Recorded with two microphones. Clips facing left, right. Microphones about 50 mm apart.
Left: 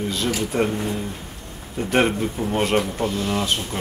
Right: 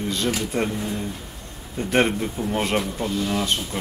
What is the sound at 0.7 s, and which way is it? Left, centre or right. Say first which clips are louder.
Speech: left 3 dB; left.